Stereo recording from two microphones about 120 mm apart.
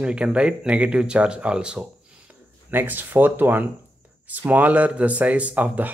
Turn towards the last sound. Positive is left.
turn(degrees=-15)  # may be behind; listen again after turning